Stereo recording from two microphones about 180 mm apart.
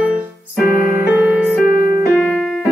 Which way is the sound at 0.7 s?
5° right (ahead or behind).